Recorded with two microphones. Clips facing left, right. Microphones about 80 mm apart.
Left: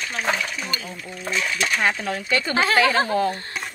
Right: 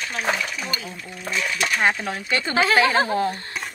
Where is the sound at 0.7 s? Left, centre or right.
Left.